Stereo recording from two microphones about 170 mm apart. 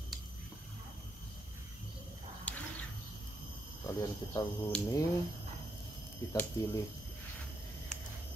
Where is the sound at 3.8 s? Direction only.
20° left (ahead or behind).